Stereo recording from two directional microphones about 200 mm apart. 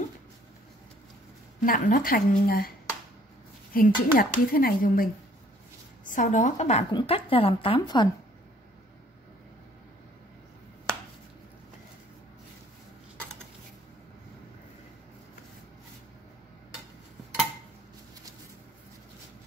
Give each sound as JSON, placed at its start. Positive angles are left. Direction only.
{"t": 1.6, "sound": "speech", "side_deg": 45}
{"t": 3.7, "sound": "a woman's voice", "side_deg": 45}